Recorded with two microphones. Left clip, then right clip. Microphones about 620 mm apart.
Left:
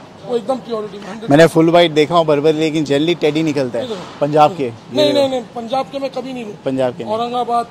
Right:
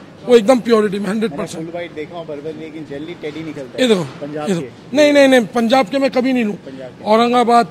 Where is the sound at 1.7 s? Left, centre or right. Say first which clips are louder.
Left 15 dB; left.